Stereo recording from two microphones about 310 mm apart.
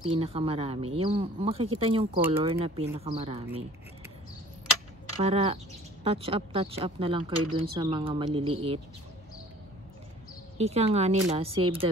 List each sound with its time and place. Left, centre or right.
0.0 s speech: centre
5.2 s speech: centre
10.6 s speech: centre